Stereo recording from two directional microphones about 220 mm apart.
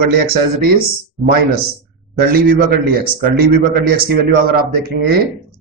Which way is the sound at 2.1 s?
45° right (ahead or behind).